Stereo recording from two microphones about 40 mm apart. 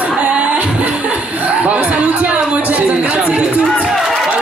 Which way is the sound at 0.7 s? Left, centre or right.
Right.